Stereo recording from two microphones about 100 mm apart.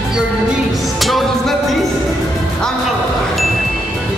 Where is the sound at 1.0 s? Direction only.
Centre (ahead or behind).